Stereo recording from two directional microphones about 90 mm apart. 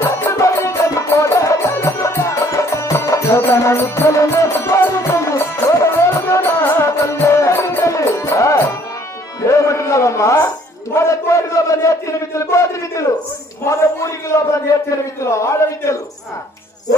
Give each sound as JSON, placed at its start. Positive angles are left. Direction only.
{"t": 0.0, "sound": "music", "side_deg": 35}
{"t": 9.4, "sound": "a sound", "side_deg": 35}
{"t": 13.7, "sound": "a man's voice", "side_deg": 35}